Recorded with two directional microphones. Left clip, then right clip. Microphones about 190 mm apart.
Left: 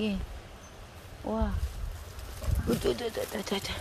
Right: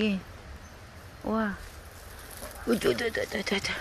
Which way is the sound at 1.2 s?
20° right (ahead or behind).